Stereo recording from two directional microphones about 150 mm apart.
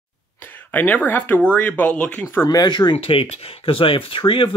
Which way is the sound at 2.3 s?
25° left (ahead or behind).